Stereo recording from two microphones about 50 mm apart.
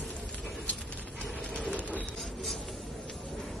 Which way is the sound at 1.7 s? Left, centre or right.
Left.